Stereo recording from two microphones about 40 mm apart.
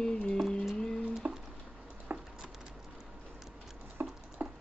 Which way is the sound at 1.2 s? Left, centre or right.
Right.